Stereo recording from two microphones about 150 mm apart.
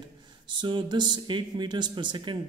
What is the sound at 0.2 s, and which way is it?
Speech, 30° right (ahead or behind).